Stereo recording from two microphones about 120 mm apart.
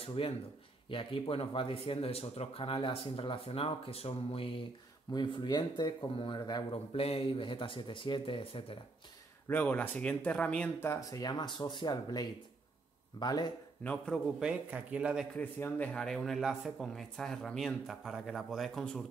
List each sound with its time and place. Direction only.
0.0 s speech: 50° left (ahead or behind)
5.1 s speech: 40° left (ahead or behind)
6.7 s speech: 55° left (ahead or behind)
9.5 s speech: 15° left (ahead or behind)
10.8 s speech: 25° left (ahead or behind)
13.8 s speech: 5° left (ahead or behind)
14.4 s a man's voice: 10° right (ahead or behind)
15.3 s speech: 10° left (ahead or behind)